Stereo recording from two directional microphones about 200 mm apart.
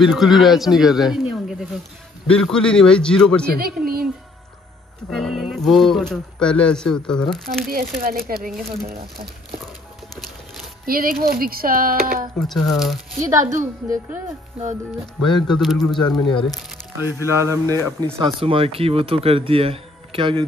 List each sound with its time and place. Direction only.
0.0 s speech: centre (ahead or behind)
3.8 s music: 45° right (ahead or behind)
5.1 s speech: centre (ahead or behind)
7.6 s speech: 45° right (ahead or behind)
10.9 s speech: 45° right (ahead or behind)
12.4 s speech: centre (ahead or behind)
13.3 s speech: 15° right (ahead or behind)
15.3 s speech: centre (ahead or behind)
16.3 s speech: 25° left (ahead or behind)
17.0 s speech: 15° right (ahead or behind)
18.2 s speech: 25° right (ahead or behind)